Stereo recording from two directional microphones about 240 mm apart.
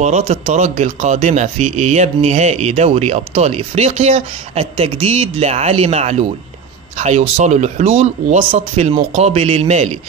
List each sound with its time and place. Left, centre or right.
0.0 s speech: right